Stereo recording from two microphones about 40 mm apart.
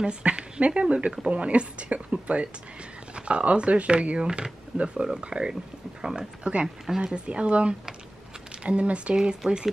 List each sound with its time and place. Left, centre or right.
0.0 s speech: right; by 7.0 s centre
7.2 s speech: right
9.1 s speech: centre